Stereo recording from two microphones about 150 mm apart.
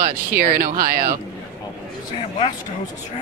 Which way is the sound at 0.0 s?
70° right (ahead or behind).